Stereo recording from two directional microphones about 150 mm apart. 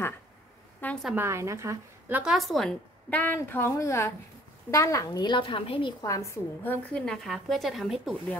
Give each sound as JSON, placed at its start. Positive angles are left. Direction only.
{"t": 0.8, "sound": "a sound", "side_deg": 10}
{"t": 1.1, "sound": "a woman's voice", "side_deg": -20}
{"t": 2.3, "sound": "a woman's voice", "side_deg": 0}
{"t": 6.3, "sound": "a woman's voice", "side_deg": 10}